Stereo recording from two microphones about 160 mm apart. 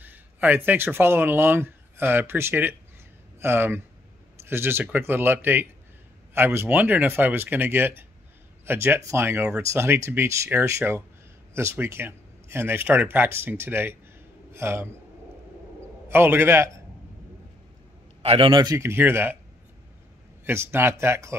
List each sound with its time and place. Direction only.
0.0 s a man's voice: 10° right (ahead or behind)
16.1 s speech: 15° right (ahead or behind)
18.2 s a man's voice: 35° right (ahead or behind)
18.8 s speech: 15° right (ahead or behind)
20.4 s speech: 15° right (ahead or behind)